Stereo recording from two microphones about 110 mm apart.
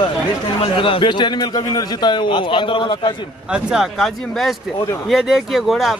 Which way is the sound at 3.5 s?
5° right (ahead or behind).